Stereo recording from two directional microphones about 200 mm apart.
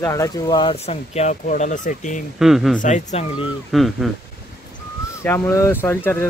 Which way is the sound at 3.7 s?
Centre (ahead or behind).